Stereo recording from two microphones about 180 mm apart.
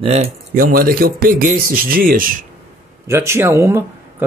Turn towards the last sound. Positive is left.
turn(degrees=-15)  # may be behind; listen again after turning